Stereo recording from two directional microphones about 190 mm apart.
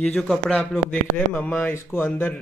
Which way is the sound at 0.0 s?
5° left (ahead or behind).